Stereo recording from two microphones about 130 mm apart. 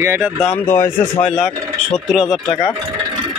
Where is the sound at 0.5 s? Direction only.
15° left (ahead or behind).